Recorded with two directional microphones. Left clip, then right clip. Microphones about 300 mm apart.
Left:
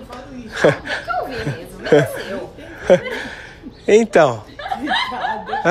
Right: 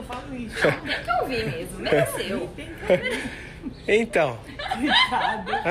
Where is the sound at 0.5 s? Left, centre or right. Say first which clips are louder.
Left 7 dB; left.